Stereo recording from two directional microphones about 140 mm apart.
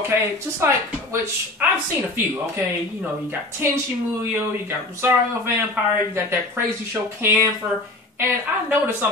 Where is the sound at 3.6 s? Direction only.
15° right (ahead or behind).